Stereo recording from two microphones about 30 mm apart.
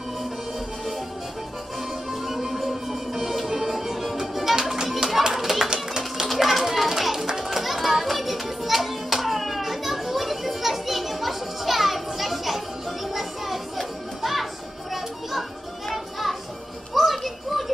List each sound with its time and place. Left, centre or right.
2.0 s music: centre
5.3 s a sound: centre
6.2 s children playing: centre
16.9 s music: centre
17.2 s children playing: centre